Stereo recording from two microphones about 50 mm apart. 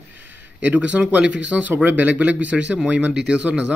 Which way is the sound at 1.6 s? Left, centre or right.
Right.